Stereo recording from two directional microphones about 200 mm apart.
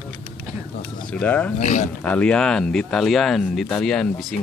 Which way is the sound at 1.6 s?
35° left (ahead or behind).